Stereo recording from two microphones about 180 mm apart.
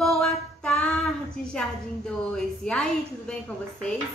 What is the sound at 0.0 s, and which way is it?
A woman's voice, centre (ahead or behind).